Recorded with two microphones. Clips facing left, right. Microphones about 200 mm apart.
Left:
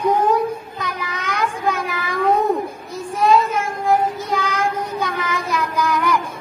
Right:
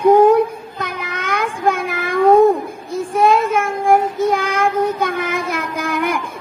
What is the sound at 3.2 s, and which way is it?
Child singing, 50° right (ahead or behind).